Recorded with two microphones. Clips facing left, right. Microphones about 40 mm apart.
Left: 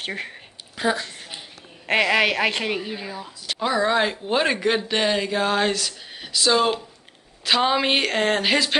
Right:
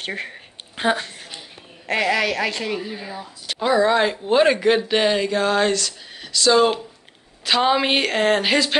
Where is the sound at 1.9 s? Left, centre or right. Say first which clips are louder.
Left 1 dB; left.